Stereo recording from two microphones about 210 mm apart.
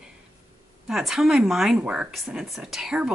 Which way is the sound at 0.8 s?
Centre (ahead or behind).